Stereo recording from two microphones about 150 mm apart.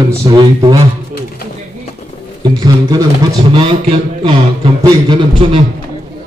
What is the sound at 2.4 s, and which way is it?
Speech, 25° right (ahead or behind).